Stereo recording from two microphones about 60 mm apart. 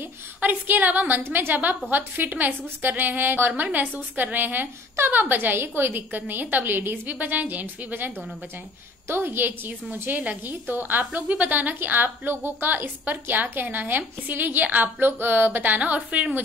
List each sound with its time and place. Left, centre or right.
0.4 s a woman's voice: right